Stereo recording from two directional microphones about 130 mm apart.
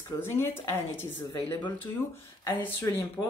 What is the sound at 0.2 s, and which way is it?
Speech, 20° left (ahead or behind).